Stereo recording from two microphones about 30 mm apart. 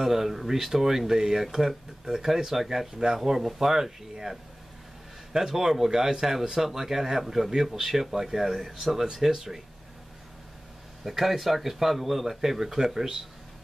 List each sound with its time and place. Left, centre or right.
0.0 s speech: centre
11.1 s speech: centre